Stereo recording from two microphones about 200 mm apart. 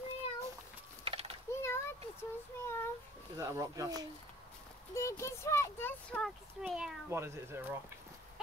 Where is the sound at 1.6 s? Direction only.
10° left (ahead or behind).